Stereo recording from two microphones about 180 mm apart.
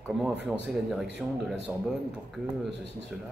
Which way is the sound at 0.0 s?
Centre (ahead or behind).